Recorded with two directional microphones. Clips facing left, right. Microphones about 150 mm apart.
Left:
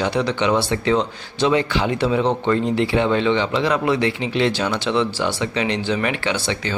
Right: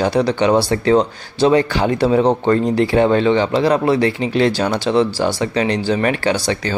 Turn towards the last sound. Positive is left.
turn(degrees=-40)  # may be behind; listen again after turning